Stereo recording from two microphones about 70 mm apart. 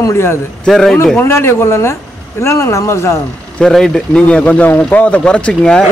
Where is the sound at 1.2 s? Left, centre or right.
Left.